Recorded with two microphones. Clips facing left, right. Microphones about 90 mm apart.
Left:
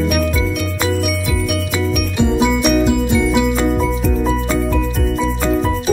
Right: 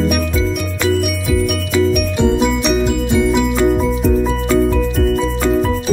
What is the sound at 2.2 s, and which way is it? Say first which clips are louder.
Music: left 1 dB; 5° left (ahead or behind).